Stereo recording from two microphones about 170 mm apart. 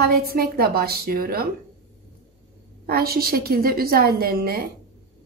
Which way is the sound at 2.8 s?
60° right (ahead or behind).